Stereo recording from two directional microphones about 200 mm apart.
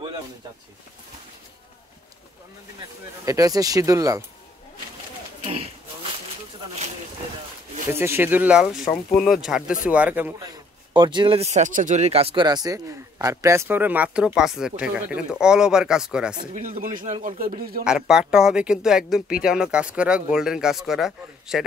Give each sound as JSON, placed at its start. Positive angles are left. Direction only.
{"t": 3.3, "sound": "a man's voice", "side_deg": -15}
{"t": 7.9, "sound": "a man's voice", "side_deg": -10}
{"t": 16.5, "sound": "a man's voice", "side_deg": -45}
{"t": 17.8, "sound": "speech", "side_deg": -5}